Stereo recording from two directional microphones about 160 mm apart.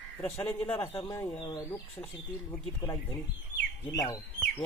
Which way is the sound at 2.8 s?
20° left (ahead or behind).